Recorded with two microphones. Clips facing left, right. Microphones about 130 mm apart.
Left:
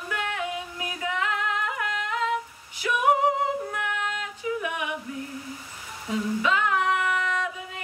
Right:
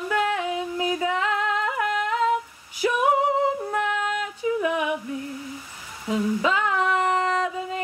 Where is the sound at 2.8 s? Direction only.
30° right (ahead or behind).